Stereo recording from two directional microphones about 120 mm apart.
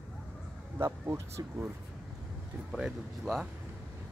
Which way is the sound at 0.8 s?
25° right (ahead or behind).